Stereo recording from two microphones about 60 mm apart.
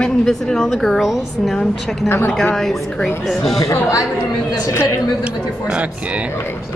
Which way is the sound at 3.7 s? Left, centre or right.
Left.